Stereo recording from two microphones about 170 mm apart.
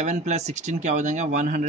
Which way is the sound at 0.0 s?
45° right (ahead or behind).